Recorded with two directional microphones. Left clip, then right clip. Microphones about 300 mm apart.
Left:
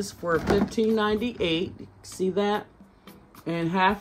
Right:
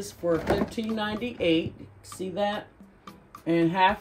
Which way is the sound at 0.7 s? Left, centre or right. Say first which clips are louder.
Left 7 dB; centre.